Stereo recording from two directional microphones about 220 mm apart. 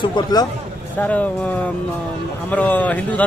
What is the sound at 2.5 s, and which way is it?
Speech, 5° left (ahead or behind).